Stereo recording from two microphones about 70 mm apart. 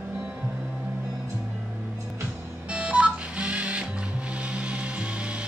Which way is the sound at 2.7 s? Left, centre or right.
Centre.